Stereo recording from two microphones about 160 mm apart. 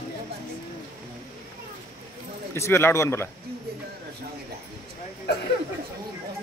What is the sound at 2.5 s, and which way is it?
Speech, 15° left (ahead or behind).